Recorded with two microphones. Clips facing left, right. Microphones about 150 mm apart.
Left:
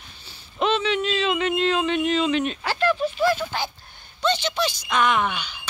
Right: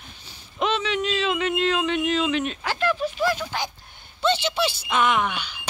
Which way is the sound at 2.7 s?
10° right (ahead or behind).